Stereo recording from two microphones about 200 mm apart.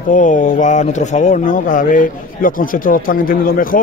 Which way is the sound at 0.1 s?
40° left (ahead or behind).